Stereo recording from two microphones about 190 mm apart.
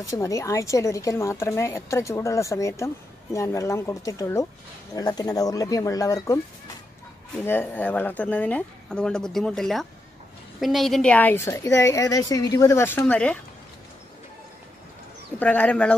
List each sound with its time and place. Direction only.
0.2 s a woman's voice: 15° left (ahead or behind)
15.3 s a woman's voice: 10° left (ahead or behind)